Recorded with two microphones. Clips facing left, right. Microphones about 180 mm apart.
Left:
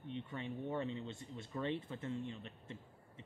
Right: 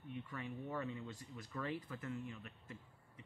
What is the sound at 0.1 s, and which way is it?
Speech, 25° left (ahead or behind).